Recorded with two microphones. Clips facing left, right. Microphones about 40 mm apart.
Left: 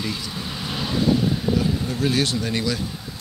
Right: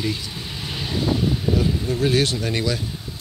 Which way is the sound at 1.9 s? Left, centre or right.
Right.